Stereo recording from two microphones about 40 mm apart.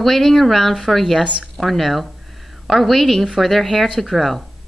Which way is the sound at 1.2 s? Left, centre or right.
Right.